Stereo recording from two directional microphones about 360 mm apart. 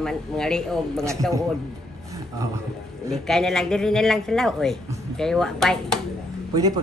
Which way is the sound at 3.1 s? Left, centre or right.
Centre.